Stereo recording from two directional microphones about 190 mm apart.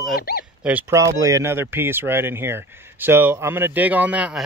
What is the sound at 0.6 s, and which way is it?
A man's voice, 10° right (ahead or behind).